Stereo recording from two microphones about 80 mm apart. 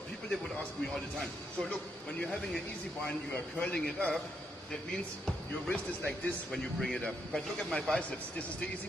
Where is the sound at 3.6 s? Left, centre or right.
Centre.